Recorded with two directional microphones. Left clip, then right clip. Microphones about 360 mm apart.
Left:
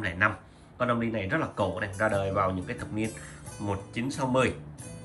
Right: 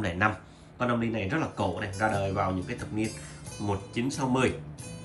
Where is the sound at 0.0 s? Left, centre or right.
Centre.